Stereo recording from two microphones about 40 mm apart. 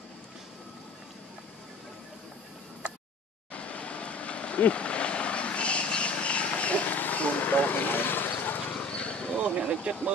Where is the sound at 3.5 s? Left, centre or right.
Left.